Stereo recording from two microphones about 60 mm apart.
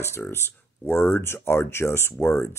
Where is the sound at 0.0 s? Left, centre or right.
Left.